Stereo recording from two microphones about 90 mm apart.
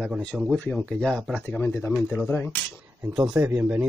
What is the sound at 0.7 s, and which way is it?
Speech, 5° left (ahead or behind).